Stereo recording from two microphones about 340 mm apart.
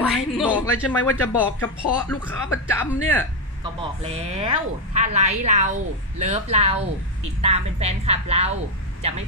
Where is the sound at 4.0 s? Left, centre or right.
Centre.